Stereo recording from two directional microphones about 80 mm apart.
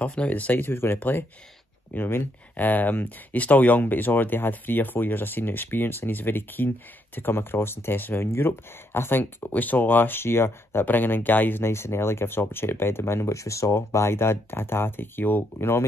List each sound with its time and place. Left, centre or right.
0.0 s speech: centre